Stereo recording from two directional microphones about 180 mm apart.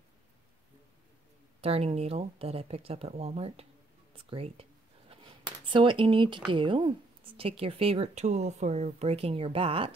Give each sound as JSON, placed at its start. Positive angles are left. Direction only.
{"t": 1.6, "sound": "speech", "side_deg": -35}
{"t": 5.1, "sound": "a sound", "side_deg": -30}
{"t": 6.5, "sound": "speech", "side_deg": -25}